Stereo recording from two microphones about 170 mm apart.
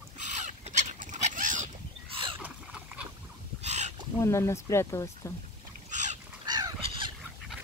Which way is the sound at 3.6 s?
40° right (ahead or behind).